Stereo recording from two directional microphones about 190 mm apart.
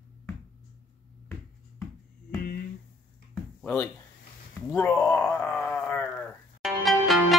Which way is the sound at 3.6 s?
5° left (ahead or behind).